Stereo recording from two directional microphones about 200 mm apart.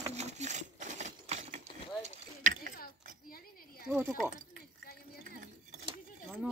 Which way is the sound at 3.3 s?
50° left (ahead or behind).